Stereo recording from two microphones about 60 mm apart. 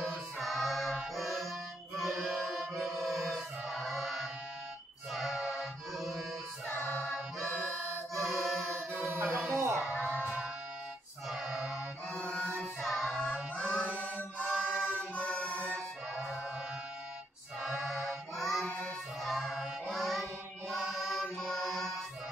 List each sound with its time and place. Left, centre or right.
0.0 s choir: centre
1.1 s music: centre
8.7 s chant: right
9.6 s music: right
10.0 s music: right
11.2 s a sound: centre
11.5 s music: centre
12.3 s music: centre
12.8 s music: centre
13.2 s music: centre
14.4 s music: centre
17.7 s music: centre